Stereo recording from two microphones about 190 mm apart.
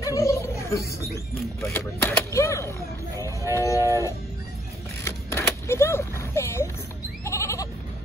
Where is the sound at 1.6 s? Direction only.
10° left (ahead or behind).